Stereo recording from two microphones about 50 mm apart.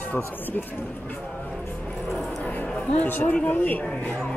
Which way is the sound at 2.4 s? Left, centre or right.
Left.